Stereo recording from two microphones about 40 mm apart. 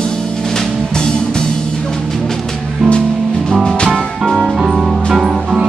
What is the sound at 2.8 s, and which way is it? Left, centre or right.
Music, centre.